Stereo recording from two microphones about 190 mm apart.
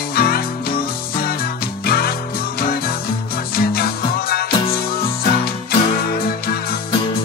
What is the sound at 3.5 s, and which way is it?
Music, 50° left (ahead or behind).